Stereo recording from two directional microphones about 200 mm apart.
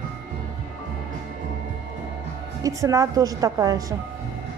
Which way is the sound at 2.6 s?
15° right (ahead or behind).